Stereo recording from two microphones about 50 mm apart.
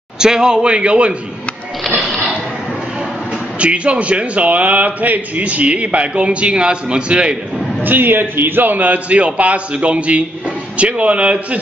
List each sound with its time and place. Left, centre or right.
0.2 s a man's voice: centre
3.5 s a man's voice: right
7.8 s a man's voice: right